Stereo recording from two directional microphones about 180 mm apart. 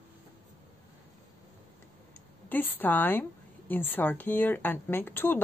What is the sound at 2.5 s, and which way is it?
Speech, 10° left (ahead or behind).